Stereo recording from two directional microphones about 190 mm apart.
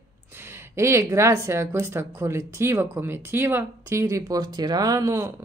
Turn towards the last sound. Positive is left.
turn(degrees=-15)  # may be behind; listen again after turning